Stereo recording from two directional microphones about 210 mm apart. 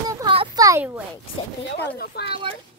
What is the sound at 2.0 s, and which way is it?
Speech, 50° left (ahead or behind).